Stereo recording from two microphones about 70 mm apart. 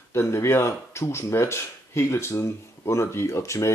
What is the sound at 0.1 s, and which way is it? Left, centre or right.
Speech, left.